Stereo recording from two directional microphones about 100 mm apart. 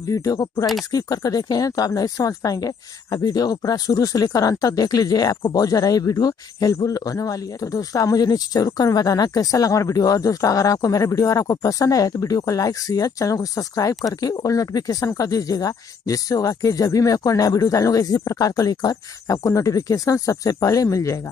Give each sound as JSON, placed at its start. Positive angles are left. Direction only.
{"t": 0.1, "sound": "speech", "side_deg": 35}